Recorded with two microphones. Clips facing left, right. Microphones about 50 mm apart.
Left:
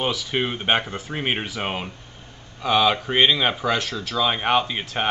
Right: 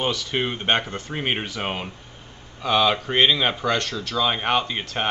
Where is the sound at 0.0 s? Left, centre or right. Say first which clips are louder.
Even; centre.